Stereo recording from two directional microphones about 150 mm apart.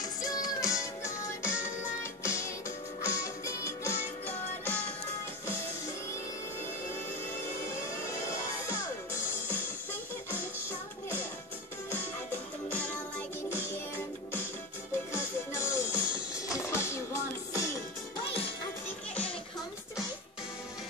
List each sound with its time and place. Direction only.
0.0 s music: 25° left (ahead or behind); by 4.9 s 10° left (ahead or behind)
15.5 s music: 20° left (ahead or behind)